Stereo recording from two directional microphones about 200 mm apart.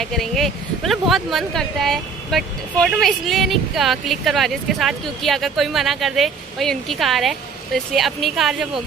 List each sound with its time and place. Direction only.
0.0 s speech: centre (ahead or behind)